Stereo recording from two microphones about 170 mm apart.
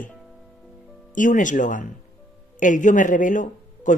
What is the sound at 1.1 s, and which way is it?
Speech, 50° left (ahead or behind).